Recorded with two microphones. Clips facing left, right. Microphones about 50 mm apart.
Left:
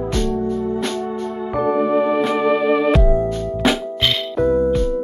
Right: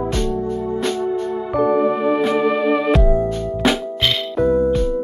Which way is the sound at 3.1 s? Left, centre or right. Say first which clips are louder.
Even; centre.